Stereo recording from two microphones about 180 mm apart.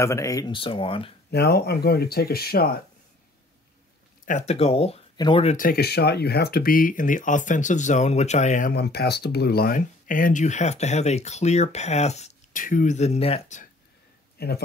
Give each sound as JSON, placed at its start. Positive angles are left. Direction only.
{"t": 0.0, "sound": "speech", "side_deg": 15}
{"t": 1.3, "sound": "speech", "side_deg": 60}
{"t": 4.3, "sound": "speech", "side_deg": 40}
{"t": 5.1, "sound": "speech", "side_deg": 25}
{"t": 5.4, "sound": "speech", "side_deg": 40}
{"t": 5.7, "sound": "speech", "side_deg": 60}
{"t": 14.4, "sound": "speech", "side_deg": 65}